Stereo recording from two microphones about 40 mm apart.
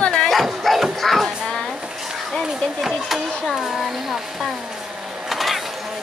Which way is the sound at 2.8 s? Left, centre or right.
Centre.